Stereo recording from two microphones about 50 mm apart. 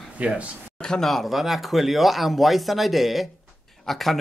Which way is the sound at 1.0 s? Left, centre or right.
Centre.